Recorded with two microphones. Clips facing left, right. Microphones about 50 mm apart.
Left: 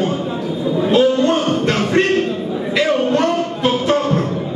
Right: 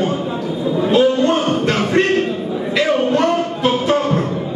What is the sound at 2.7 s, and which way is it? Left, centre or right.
Music, centre.